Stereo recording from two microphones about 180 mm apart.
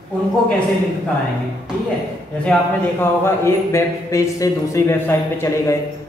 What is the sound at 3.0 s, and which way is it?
Speech, 15° left (ahead or behind).